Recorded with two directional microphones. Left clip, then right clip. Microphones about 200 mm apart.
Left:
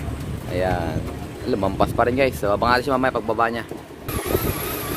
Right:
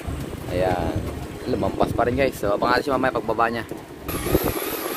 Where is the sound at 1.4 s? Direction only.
15° left (ahead or behind).